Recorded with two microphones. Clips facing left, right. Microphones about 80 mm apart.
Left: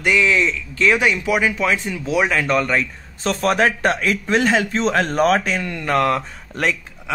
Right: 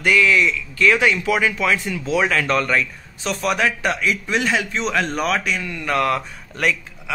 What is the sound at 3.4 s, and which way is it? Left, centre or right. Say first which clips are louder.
A man's voice: left 3 dB; left.